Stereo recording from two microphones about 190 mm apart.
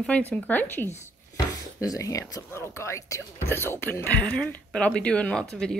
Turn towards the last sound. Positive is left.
turn(degrees=5)  # may be behind; listen again after turning